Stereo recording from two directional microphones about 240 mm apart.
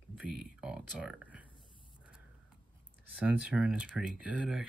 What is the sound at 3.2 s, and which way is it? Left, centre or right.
Speech, centre.